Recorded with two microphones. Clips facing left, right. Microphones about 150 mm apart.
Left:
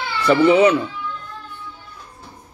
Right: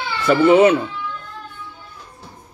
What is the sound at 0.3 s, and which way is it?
Speech, 45° right (ahead or behind).